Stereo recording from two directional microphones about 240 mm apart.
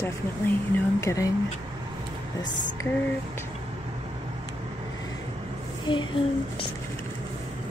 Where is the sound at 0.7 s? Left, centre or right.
Centre.